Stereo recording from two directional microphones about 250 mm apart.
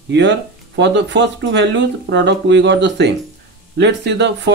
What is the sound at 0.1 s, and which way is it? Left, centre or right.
Speech, right.